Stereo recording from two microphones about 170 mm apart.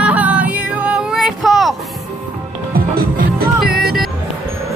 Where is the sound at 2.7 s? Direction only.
60° right (ahead or behind).